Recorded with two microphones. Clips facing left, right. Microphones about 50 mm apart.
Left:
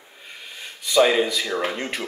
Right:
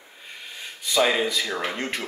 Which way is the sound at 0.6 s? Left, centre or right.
Centre.